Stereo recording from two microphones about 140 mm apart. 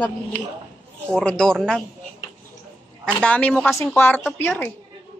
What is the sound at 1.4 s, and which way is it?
Speech, 5° left (ahead or behind).